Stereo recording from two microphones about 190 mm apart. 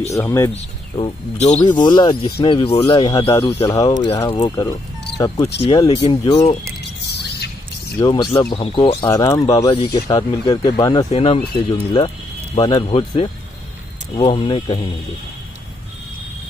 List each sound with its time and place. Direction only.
0.1 s speech: 15° left (ahead or behind)
0.5 s speech: 30° left (ahead or behind)
1.7 s speech: 20° left (ahead or behind)
7.1 s a sound: 60° left (ahead or behind)
8.0 s speech: 25° left (ahead or behind)
11.1 s speech: 35° left (ahead or behind)
11.7 s speech: 25° left (ahead or behind)
12.9 s speech: 30° left (ahead or behind)